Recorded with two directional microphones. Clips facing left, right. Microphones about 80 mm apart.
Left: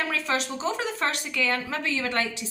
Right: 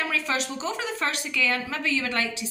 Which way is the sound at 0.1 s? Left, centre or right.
Left.